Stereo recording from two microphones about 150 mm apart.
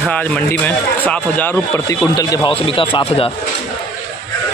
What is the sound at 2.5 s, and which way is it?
Speech, 35° left (ahead or behind).